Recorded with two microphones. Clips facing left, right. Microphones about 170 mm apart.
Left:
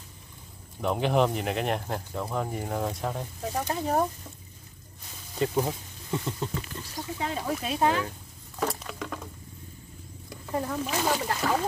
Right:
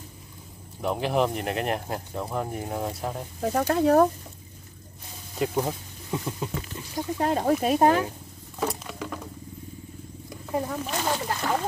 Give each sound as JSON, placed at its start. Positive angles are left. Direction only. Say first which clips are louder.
{"t": 0.7, "sound": "speech", "louder": "even", "side_deg": 0}
{"t": 3.5, "sound": "speech", "louder": "right 7 dB", "side_deg": -70}
{"t": 5.4, "sound": "speech", "louder": "even", "side_deg": -10}
{"t": 7.2, "sound": "speech", "louder": "right 8 dB", "side_deg": -50}
{"t": 8.8, "sound": "patter", "louder": "right 2 dB", "side_deg": -5}
{"t": 10.5, "sound": "speech", "louder": "right 1 dB", "side_deg": -10}